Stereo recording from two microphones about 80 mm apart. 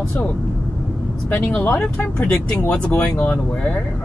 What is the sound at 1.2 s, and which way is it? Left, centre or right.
Speech, centre.